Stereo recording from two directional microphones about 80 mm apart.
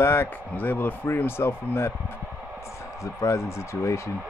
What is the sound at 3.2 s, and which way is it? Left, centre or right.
Speech, left.